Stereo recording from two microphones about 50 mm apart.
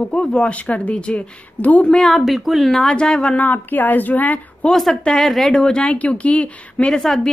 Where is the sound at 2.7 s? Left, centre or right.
Centre.